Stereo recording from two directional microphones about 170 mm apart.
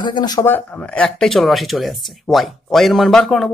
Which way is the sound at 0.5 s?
10° left (ahead or behind).